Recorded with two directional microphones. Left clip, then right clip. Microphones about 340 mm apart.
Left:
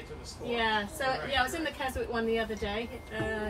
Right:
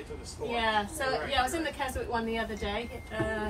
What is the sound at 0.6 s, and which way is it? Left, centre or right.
A woman's voice, centre.